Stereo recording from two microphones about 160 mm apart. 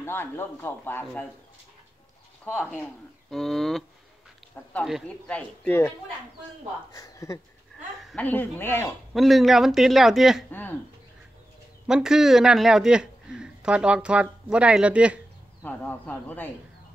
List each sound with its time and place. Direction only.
0.0 s speech: 15° left (ahead or behind)
2.4 s speech: 10° left (ahead or behind)
9.1 s speech: centre (ahead or behind)
11.9 s speech: 5° right (ahead or behind)
15.6 s speech: 10° left (ahead or behind)